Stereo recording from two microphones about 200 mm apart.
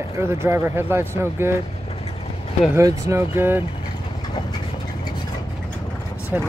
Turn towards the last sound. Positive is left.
turn(degrees=-10)  # may be behind; listen again after turning